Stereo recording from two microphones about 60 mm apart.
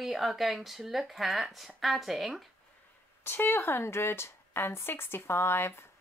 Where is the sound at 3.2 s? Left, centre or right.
Left.